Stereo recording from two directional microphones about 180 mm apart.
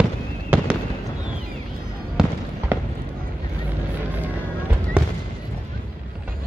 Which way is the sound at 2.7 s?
10° right (ahead or behind).